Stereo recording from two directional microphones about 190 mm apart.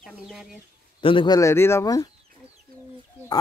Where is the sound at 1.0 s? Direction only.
25° left (ahead or behind).